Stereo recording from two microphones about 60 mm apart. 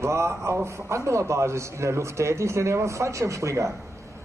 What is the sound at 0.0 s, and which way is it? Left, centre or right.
A man's voice, right.